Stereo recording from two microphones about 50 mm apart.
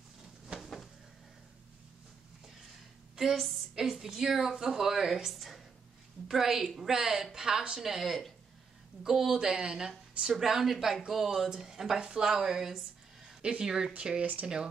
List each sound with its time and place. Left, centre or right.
0.5 s a sound: centre
3.2 s a woman's voice: centre
14.2 s speech: right